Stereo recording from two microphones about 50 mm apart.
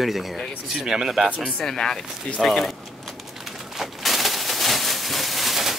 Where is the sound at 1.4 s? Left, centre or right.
Centre.